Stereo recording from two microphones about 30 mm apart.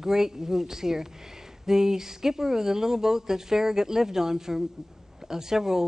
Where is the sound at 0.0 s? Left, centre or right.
Centre.